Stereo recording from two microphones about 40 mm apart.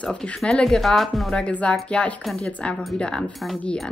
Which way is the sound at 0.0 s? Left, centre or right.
Left.